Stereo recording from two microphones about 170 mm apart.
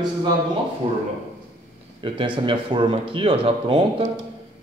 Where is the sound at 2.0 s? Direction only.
30° right (ahead or behind).